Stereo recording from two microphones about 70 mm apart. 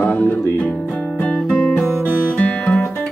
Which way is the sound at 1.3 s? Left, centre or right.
Centre.